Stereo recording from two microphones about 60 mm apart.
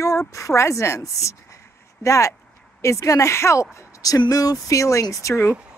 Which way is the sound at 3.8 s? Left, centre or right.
Left.